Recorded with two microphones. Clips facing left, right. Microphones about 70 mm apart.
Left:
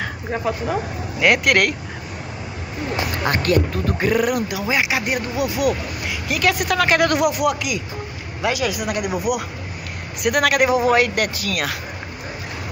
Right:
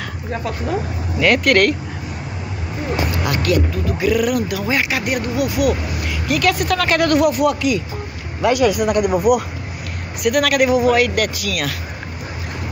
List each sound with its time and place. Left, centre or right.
1.2 s speech: centre
3.3 s speech: left
4.1 s speech: left
8.4 s a man's voice: centre
10.2 s speech: left